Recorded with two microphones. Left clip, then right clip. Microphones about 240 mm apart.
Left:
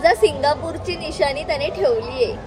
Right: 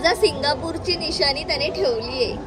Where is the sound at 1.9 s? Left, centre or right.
Left.